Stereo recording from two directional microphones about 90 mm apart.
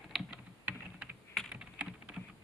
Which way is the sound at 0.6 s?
20° right (ahead or behind).